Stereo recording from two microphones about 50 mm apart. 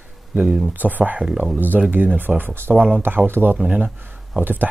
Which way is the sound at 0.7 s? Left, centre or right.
Right.